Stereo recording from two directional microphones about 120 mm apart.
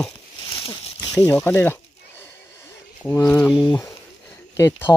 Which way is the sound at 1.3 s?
15° left (ahead or behind).